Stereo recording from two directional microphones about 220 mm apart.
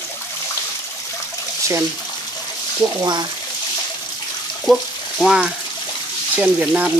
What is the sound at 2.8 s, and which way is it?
Speech, 15° right (ahead or behind).